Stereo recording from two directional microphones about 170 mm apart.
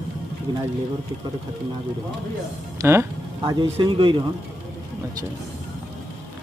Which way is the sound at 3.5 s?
25° right (ahead or behind).